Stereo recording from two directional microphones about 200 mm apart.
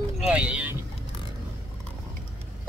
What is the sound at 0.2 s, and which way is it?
Vehicle, 5° right (ahead or behind).